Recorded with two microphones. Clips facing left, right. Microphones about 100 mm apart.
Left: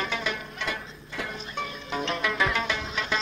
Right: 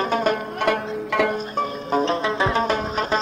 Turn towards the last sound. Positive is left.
turn(degrees=-40)  # may be behind; listen again after turning